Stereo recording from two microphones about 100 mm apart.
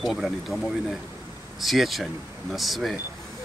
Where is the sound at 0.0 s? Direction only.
Centre (ahead or behind).